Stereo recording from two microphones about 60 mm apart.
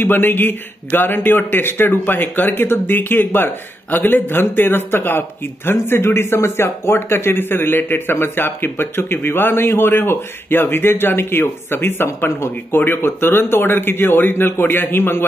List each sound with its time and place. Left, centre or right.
0.0 s a man's voice: left